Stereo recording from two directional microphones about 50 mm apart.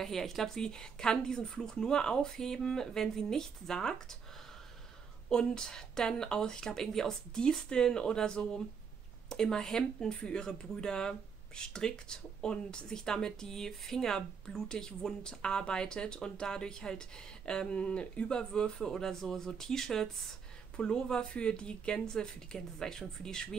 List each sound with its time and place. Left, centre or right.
0.0 s speech: centre
5.3 s speech: centre